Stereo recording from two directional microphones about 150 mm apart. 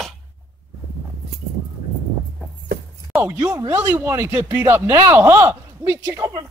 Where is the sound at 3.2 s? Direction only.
15° right (ahead or behind).